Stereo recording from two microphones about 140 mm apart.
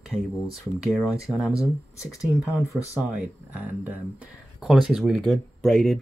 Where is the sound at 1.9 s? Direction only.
20° left (ahead or behind).